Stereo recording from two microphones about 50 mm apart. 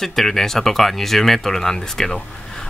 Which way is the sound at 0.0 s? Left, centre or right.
Centre.